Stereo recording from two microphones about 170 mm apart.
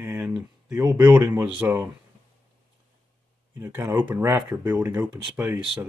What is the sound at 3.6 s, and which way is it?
Speech, 15° right (ahead or behind).